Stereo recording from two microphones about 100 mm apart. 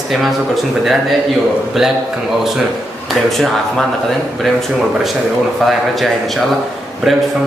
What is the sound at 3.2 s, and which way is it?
Speech, centre (ahead or behind).